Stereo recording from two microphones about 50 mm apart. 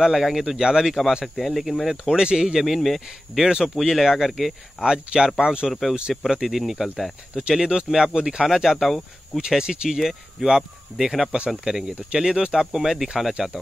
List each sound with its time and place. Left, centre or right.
0.2 s speech: centre
2.6 s speech: centre
3.4 s speech: centre
4.7 s speech: centre
5.7 s speech: centre
5.9 s speech: centre
9.5 s speech: centre
12.5 s speech: centre